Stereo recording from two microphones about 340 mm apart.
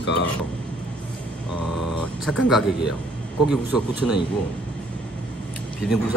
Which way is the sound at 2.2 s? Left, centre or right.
Centre.